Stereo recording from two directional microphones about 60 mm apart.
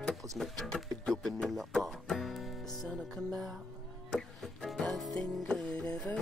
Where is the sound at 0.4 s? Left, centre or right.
Centre.